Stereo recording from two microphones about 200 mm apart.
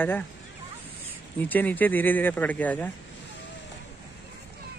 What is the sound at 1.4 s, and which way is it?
Speech, 10° left (ahead or behind).